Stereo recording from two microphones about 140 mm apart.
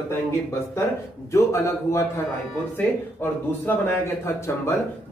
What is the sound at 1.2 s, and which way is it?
A man's voice, 20° left (ahead or behind).